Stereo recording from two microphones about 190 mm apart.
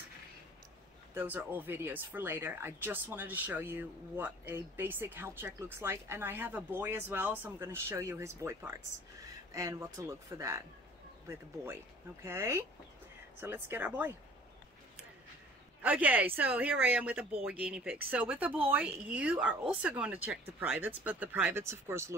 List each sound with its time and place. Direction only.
1.1 s speech: 10° right (ahead or behind)
15.8 s speech: 10° right (ahead or behind)